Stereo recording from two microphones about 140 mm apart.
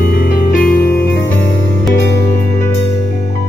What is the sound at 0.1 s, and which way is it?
Music, 90° left.